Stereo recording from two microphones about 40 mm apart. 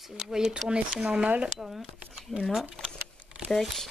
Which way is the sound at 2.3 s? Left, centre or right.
Left.